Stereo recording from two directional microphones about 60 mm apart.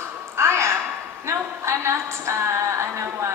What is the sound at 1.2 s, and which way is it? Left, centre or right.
A woman's voice, right.